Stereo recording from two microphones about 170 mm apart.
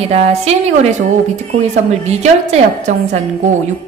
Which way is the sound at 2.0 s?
40° right (ahead or behind).